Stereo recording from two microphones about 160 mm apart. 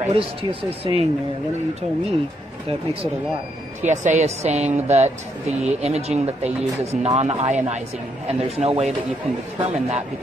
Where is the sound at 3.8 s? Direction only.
50° right (ahead or behind).